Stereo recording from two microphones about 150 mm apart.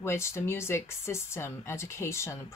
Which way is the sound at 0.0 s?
20° left (ahead or behind).